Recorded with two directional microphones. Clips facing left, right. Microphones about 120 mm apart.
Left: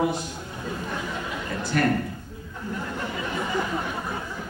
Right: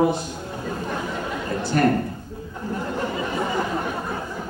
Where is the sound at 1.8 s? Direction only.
35° right (ahead or behind).